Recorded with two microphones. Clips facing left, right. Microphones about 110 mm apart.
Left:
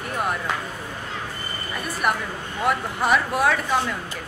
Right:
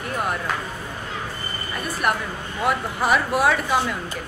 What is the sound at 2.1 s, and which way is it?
Speech, centre (ahead or behind).